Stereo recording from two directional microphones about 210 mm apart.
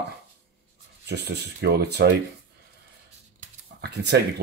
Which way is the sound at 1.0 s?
50° right (ahead or behind).